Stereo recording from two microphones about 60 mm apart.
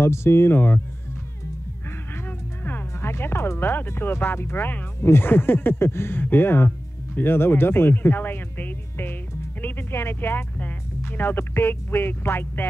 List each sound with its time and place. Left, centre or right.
0.0 s speech: left
2.6 s speech: left